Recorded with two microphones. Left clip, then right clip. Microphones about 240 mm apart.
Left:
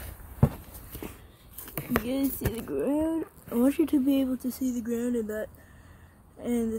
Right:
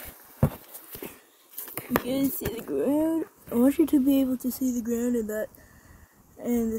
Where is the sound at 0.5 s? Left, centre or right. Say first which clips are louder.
Right 2 dB; right.